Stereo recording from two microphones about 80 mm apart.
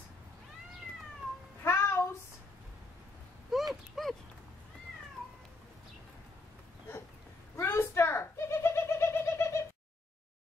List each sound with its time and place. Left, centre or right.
1.6 s music: left
3.5 s a sound: centre
7.5 s bird: left